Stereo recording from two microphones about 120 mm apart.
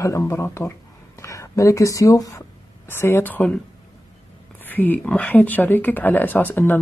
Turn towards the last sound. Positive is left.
turn(degrees=15)  # may be behind; listen again after turning